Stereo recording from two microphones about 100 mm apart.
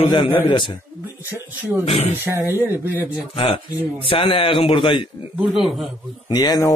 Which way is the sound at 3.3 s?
70° left (ahead or behind).